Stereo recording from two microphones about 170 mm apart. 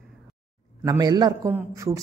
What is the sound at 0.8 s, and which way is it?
A man's voice, 20° right (ahead or behind).